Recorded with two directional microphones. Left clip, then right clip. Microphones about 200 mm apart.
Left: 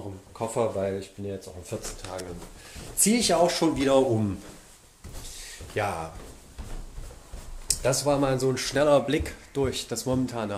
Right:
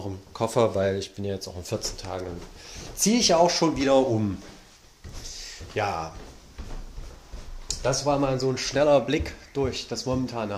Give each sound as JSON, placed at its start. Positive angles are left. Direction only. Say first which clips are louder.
{"t": 0.4, "sound": "speech", "louder": "right 4 dB", "side_deg": -40}
{"t": 3.0, "sound": "speech", "louder": "right 2 dB", "side_deg": -10}
{"t": 5.4, "sound": "a sound", "louder": "right 1 dB", "side_deg": -5}
{"t": 7.6, "sound": "speech", "louder": "even", "side_deg": 10}